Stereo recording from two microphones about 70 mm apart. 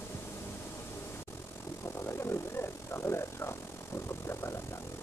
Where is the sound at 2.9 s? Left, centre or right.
Left.